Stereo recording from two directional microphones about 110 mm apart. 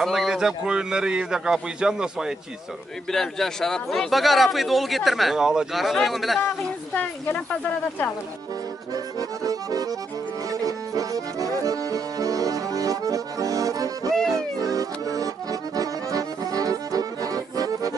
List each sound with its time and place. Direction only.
0.0 s a man's voice: centre (ahead or behind)
6.4 s speech: 15° left (ahead or behind)
8.9 s accordion: 35° right (ahead or behind)